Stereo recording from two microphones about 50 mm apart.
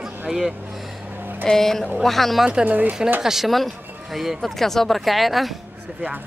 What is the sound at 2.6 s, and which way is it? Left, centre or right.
Speech, right.